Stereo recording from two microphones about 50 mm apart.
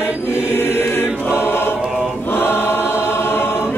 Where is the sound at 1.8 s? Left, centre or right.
Centre.